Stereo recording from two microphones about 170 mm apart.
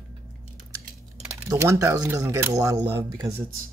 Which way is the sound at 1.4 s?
15° right (ahead or behind).